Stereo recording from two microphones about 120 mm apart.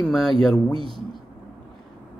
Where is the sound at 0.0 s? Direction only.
Centre (ahead or behind).